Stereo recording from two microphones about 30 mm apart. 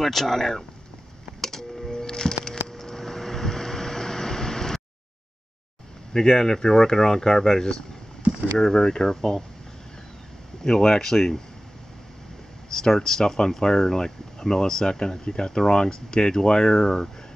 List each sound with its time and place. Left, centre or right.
0.0 s speech: centre
1.4 s music: centre
2.7 s vehicle: centre
6.1 s speech: centre
10.6 s speech: centre
12.7 s speech: centre